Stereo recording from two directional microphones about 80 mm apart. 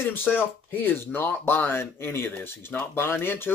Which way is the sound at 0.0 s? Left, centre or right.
Left.